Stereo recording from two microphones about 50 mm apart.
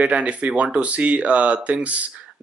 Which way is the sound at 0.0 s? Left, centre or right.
Right.